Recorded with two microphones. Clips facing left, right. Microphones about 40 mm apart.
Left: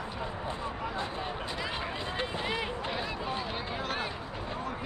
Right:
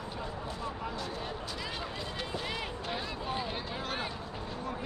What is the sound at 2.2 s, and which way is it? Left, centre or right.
Run, centre.